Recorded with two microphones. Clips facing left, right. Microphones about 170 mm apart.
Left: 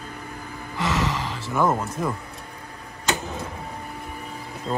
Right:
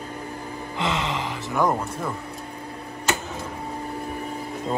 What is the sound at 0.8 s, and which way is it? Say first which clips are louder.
Gasp: left 1 dB; 20° right (ahead or behind).